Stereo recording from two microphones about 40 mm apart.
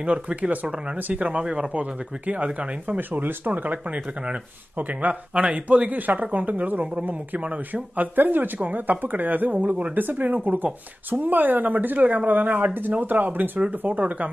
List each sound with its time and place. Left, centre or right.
0.0 s speech: right
1.4 s speech: right
1.7 s speech: right
3.0 s speech: right
4.7 s speech: right
5.9 s speech: right